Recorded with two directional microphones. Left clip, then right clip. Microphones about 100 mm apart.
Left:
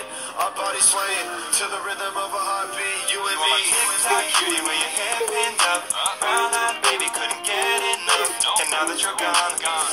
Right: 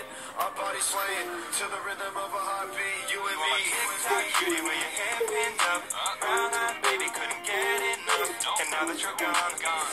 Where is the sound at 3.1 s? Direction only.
35° left (ahead or behind).